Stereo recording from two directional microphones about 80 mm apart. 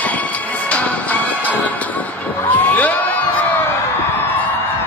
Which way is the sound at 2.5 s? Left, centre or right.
Centre.